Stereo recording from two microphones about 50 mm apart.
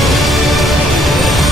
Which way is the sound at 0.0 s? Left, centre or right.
Centre.